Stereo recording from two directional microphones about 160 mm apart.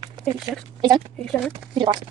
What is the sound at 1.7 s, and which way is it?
Speech, 30° right (ahead or behind).